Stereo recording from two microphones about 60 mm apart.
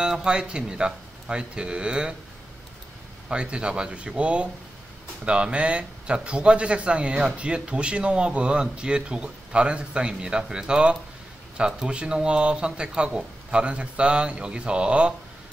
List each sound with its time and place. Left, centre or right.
0.0 s speech: centre
3.3 s speech: centre